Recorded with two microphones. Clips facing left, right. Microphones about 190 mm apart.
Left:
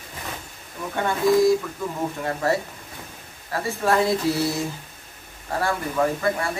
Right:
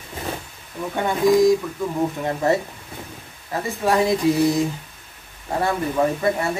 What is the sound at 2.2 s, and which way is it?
Speech, 20° right (ahead or behind).